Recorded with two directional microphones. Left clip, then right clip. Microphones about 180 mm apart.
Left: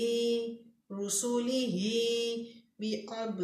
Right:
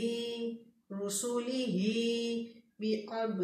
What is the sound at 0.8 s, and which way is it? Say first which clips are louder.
Mantra: left 2 dB; 50° left (ahead or behind).